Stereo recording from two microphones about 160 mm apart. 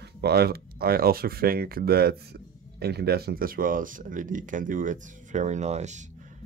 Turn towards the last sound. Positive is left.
turn(degrees=-45)  # may be behind; listen again after turning